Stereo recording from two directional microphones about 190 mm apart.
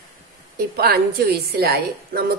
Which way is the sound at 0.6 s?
55° right (ahead or behind).